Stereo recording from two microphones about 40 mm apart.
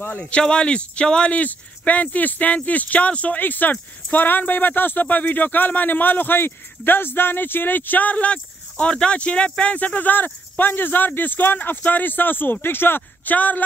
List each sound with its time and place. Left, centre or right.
0.4 s speech: left
1.3 s speech: left
3.3 s speech: left
5.0 s speech: left
13.3 s speech: left